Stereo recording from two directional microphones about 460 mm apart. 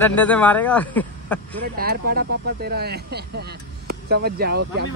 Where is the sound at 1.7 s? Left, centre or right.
Centre.